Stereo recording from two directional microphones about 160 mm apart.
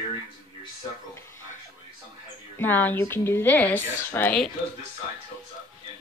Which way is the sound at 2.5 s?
10° left (ahead or behind).